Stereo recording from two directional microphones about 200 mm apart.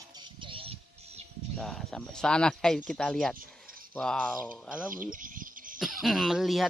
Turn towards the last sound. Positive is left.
turn(degrees=0)  # may be behind; listen again after turning